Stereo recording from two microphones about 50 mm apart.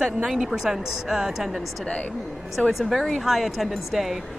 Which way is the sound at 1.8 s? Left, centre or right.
Left.